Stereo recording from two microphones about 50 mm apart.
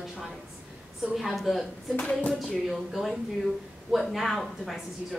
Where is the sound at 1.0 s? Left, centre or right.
Centre.